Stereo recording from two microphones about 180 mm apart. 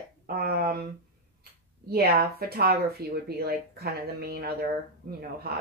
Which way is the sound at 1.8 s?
60° right (ahead or behind).